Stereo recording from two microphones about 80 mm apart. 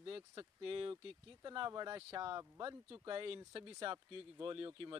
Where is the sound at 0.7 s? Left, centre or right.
Right.